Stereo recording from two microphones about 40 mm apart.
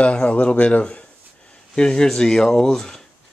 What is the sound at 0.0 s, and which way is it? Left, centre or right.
Speech, left.